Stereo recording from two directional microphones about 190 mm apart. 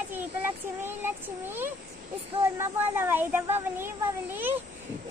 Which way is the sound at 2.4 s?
10° right (ahead or behind).